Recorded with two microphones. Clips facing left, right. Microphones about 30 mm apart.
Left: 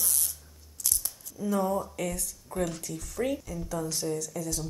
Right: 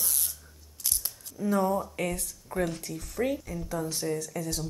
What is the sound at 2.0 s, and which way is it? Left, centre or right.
Speech, right.